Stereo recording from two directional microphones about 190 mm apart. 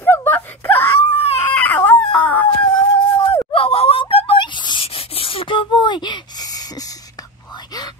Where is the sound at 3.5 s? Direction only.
30° left (ahead or behind).